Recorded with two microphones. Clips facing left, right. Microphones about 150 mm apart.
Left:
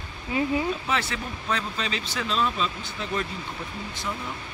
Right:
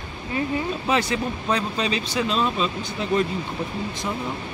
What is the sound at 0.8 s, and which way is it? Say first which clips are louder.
Speech: right 6 dB; 15° right (ahead or behind).